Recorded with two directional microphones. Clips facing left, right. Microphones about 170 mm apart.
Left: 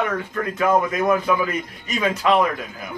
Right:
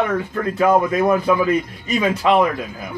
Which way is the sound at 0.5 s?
35° right (ahead or behind).